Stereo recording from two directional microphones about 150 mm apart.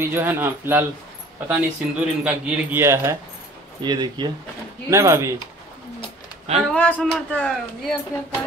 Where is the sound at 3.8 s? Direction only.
30° right (ahead or behind).